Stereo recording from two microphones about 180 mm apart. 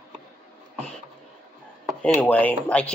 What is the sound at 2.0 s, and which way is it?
Speech, 10° left (ahead or behind).